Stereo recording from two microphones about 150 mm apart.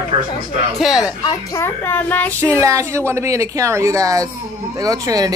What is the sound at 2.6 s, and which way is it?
Speech, 20° right (ahead or behind).